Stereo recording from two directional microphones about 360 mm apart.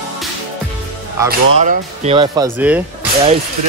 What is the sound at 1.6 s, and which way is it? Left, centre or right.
Speech, centre.